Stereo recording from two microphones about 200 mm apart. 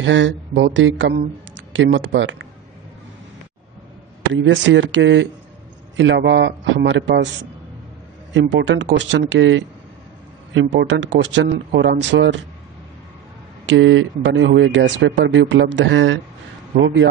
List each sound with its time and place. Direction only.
0.0 s speech: 70° right (ahead or behind)
4.3 s speech: 65° right (ahead or behind)
8.3 s speech: 65° right (ahead or behind)
13.7 s speech: 70° right (ahead or behind)